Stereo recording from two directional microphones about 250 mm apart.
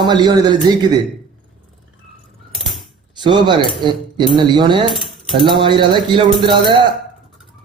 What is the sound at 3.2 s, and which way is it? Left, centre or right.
Speech, centre.